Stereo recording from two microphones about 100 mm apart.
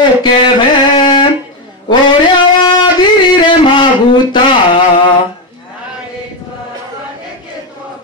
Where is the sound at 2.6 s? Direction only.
50° left (ahead or behind).